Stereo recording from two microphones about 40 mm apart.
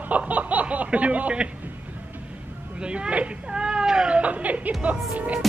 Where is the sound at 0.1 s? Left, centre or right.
Right.